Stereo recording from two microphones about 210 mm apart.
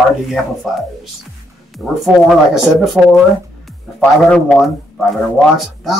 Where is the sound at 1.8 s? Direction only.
Centre (ahead or behind).